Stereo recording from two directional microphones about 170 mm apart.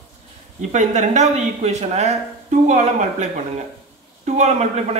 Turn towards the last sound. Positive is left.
turn(degrees=-45)  # may be behind; listen again after turning